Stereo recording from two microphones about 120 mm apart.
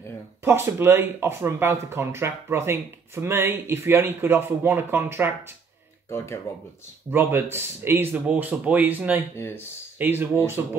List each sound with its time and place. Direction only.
0.5 s speech: 20° right (ahead or behind)
6.0 s speech: 20° left (ahead or behind)
7.1 s speech: 20° right (ahead or behind)